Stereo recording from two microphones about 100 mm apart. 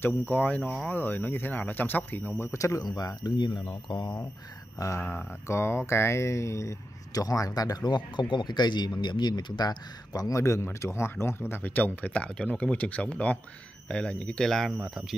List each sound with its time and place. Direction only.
0.0 s speech: 20° left (ahead or behind); by 4.0 s 55° left (ahead or behind)
4.7 s speech: 30° left (ahead or behind); by 14.7 s 5° left (ahead or behind)
14.8 s speech: 5° right (ahead or behind)